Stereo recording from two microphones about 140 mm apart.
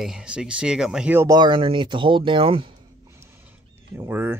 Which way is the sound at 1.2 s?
30° right (ahead or behind).